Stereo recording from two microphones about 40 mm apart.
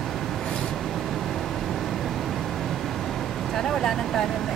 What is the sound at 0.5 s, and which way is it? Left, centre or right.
Vehicle, left.